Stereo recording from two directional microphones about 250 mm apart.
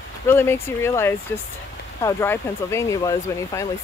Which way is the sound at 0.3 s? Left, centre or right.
Centre.